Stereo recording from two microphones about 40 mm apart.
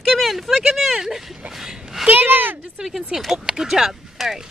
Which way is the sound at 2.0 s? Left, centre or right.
Right.